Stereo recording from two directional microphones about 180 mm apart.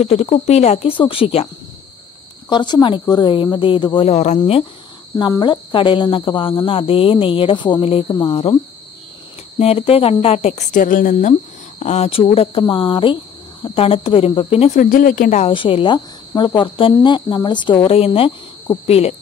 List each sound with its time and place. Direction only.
0.0 s speech: 35° left (ahead or behind)
2.5 s speech: 25° left (ahead or behind)
5.2 s speech: 25° left (ahead or behind)
9.6 s speech: 35° left (ahead or behind)
11.8 s speech: 40° left (ahead or behind)
14.8 s speech: 50° left (ahead or behind)
15.5 s speech: 30° left (ahead or behind)